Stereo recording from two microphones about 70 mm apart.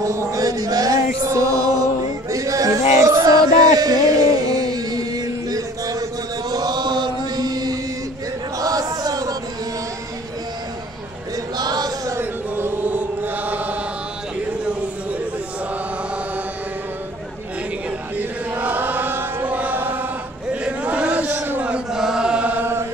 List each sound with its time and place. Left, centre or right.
0.0 s chant: right
6.5 s chant: right
8.5 s a sound: right
11.5 s chant: right
12.2 s chant: right
18.1 s chant: right
21.6 s chant: centre